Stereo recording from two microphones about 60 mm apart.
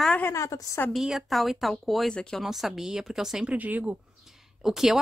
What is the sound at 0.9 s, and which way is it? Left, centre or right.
Speech, centre.